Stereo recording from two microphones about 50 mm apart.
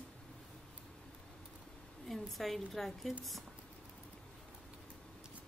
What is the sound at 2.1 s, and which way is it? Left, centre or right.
A woman's voice, centre.